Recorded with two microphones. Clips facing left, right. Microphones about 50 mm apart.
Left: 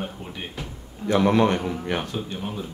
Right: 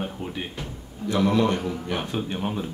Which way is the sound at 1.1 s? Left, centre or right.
Left.